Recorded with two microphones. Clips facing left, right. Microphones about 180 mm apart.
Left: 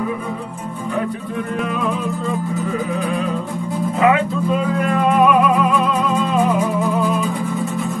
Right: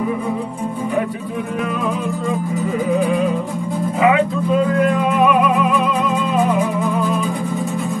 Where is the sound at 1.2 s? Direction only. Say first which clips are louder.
Even; centre (ahead or behind).